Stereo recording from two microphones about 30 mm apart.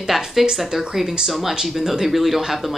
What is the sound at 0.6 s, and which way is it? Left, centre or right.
Speech, centre.